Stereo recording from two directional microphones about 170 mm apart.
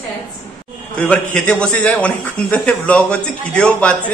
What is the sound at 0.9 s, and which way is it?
A man's voice, 5° left (ahead or behind).